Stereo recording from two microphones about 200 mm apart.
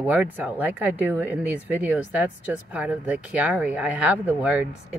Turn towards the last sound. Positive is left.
turn(degrees=-10)  # may be behind; listen again after turning